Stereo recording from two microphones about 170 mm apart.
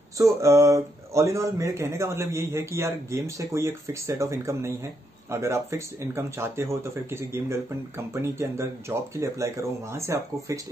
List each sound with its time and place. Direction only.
0.2 s speech: 15° right (ahead or behind)